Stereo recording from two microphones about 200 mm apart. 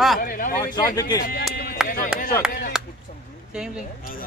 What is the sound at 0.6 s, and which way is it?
Speech, 15° left (ahead or behind).